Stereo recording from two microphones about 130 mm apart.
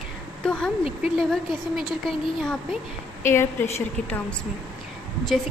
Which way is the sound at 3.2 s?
20° left (ahead or behind).